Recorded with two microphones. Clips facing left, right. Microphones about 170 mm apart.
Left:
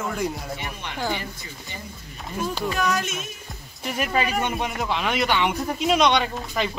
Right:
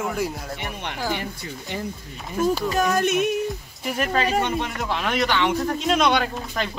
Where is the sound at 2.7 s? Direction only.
50° right (ahead or behind); by 3.4 s 65° right (ahead or behind).